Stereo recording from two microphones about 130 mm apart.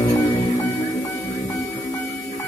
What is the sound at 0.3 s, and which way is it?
Music, 30° left (ahead or behind).